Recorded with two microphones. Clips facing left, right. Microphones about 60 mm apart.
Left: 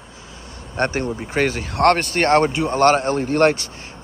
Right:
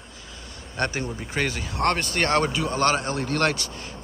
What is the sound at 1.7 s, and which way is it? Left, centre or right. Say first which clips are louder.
Speech: left 9 dB; left.